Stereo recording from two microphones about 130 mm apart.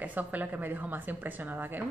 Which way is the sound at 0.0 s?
10° right (ahead or behind).